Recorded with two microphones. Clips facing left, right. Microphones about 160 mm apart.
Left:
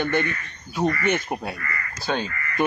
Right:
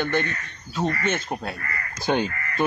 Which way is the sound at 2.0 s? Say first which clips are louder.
Right 4 dB; 15° right (ahead or behind).